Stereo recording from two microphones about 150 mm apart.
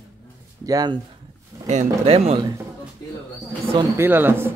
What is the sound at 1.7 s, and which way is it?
Speech, 45° right (ahead or behind).